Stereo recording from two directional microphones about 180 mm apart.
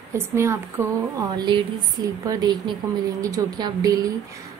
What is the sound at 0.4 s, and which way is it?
Speech, 15° right (ahead or behind).